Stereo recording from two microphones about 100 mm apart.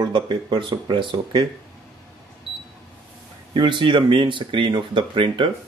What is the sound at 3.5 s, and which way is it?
Speech, 50° right (ahead or behind).